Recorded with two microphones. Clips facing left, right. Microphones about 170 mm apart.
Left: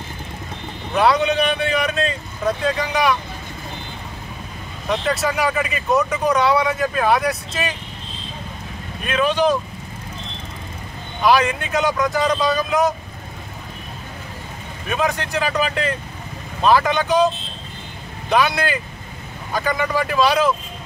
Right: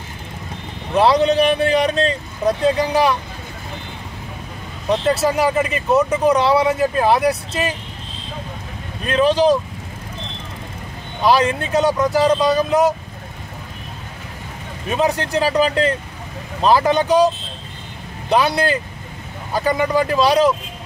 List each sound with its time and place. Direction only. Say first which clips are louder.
0.9 s speech: right 3 dB; 30° right (ahead or behind)
4.8 s speech: right 4 dB; 30° right (ahead or behind)
9.0 s speech: right 4 dB; 35° right (ahead or behind)
11.2 s speech: right 1 dB; 35° right (ahead or behind)
14.9 s speech: right 3 dB; 30° right (ahead or behind)
18.3 s speech: right 1 dB; 30° right (ahead or behind)
19.6 s speech: right 4 dB; 30° right (ahead or behind)